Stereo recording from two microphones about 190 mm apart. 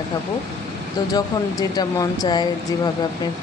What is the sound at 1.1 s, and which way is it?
Speech, 20° left (ahead or behind).